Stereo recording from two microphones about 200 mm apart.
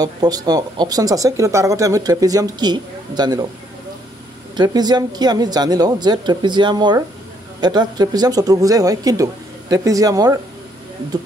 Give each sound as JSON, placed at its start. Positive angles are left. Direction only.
{"t": 0.0, "sound": "speech", "side_deg": -20}
{"t": 4.6, "sound": "speech", "side_deg": -20}